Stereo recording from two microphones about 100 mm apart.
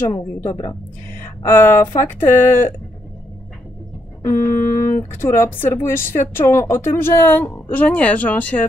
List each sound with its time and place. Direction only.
1.2 s speech: 25° left (ahead or behind)
4.2 s speech: 30° left (ahead or behind)